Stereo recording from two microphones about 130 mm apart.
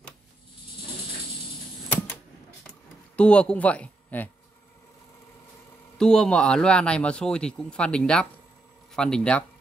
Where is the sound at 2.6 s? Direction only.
10° left (ahead or behind).